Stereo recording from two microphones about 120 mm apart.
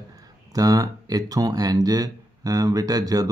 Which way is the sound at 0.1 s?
30° right (ahead or behind).